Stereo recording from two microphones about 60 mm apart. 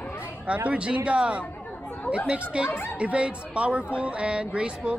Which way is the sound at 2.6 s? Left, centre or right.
Left.